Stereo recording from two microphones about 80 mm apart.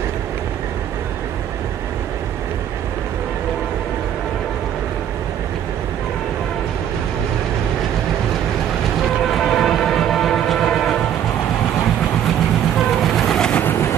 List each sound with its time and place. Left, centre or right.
9.3 s train: centre
12.7 s train: centre
13.6 s vehicle: left